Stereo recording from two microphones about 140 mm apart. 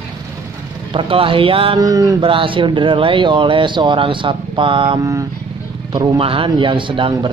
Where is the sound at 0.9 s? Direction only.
40° right (ahead or behind).